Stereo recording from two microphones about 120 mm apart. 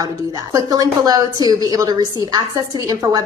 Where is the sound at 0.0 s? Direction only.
30° right (ahead or behind).